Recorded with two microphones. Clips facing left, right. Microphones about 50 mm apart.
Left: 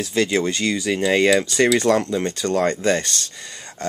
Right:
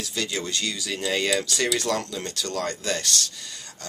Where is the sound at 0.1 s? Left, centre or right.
Left.